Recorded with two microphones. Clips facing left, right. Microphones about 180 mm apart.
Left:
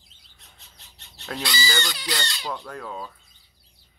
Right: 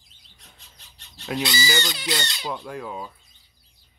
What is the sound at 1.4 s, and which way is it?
Fowl, 20° right (ahead or behind).